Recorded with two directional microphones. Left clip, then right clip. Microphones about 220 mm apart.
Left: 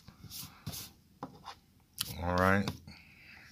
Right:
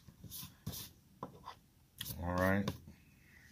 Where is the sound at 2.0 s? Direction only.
30° left (ahead or behind).